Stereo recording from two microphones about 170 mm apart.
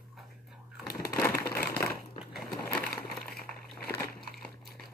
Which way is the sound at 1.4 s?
65° left (ahead or behind).